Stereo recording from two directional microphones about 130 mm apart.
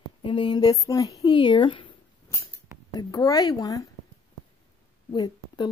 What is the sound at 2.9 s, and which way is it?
Speech, 30° left (ahead or behind).